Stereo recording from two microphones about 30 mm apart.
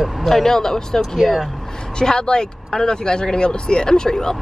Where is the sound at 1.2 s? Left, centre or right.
Centre.